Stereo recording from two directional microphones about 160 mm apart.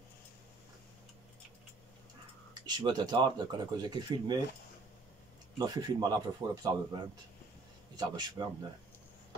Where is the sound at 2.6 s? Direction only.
25° right (ahead or behind).